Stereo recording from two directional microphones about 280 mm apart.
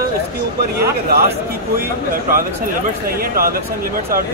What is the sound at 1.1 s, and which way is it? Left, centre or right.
Speech, right.